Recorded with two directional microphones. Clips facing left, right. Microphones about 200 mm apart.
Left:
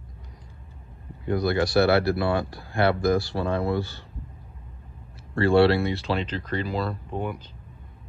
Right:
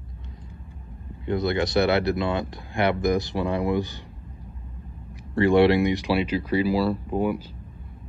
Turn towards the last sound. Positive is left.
turn(degrees=-5)  # may be behind; listen again after turning